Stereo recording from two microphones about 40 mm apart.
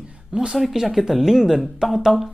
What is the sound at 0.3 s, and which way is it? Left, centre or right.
Speech, right.